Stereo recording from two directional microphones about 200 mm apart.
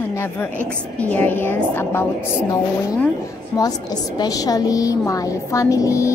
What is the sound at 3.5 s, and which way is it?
A woman's voice, 20° left (ahead or behind).